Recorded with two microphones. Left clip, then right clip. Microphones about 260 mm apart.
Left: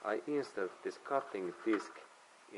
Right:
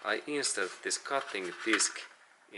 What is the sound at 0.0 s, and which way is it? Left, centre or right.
Speech, centre.